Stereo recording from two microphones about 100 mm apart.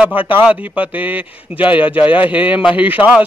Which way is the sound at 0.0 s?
15° right (ahead or behind).